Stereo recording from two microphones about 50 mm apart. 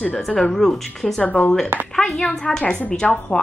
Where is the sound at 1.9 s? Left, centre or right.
Centre.